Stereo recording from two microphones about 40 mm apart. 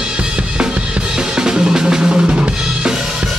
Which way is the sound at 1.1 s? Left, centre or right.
Centre.